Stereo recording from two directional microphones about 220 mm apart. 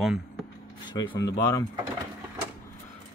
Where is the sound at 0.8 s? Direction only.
20° left (ahead or behind).